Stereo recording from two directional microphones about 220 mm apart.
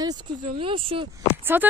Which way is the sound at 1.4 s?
10° right (ahead or behind).